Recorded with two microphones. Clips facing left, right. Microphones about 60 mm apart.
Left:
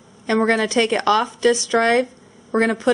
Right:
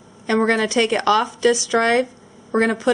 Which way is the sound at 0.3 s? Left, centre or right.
Centre.